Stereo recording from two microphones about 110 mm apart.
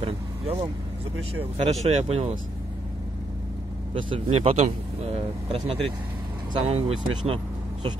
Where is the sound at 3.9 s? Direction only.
55° right (ahead or behind).